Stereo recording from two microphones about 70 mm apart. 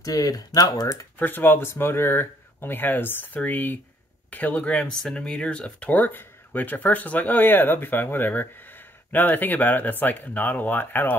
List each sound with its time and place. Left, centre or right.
0.0 s speech: left
1.2 s speech: left